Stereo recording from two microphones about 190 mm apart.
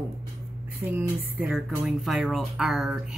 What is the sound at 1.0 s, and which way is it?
A woman's voice, 5° right (ahead or behind).